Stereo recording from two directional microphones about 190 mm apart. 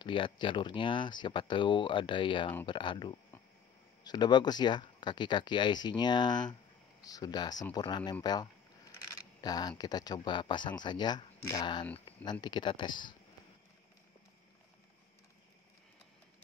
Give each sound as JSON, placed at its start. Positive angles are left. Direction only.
{"t": 0.0, "sound": "speech", "side_deg": 25}